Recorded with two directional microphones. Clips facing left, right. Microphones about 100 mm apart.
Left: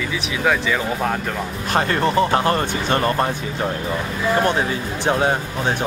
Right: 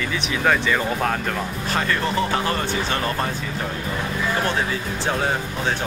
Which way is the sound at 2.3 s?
40° left (ahead or behind).